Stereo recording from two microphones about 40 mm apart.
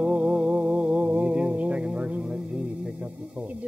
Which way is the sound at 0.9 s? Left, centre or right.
Centre.